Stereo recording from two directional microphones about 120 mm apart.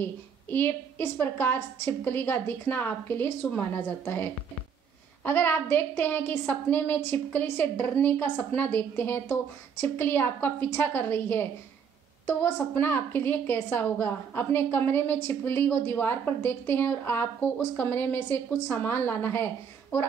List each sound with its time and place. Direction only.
0.0 s a woman's voice: 15° left (ahead or behind)